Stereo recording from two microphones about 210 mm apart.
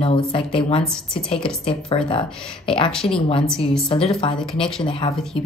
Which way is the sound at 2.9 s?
5° left (ahead or behind).